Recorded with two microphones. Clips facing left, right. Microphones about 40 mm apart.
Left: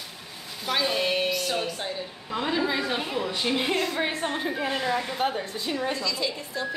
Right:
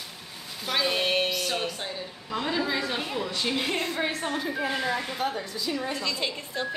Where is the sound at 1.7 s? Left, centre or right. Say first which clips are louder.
Left 2 dB; centre; by 4.5 s left.